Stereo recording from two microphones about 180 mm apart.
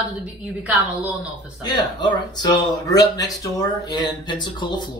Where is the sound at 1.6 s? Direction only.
25° left (ahead or behind).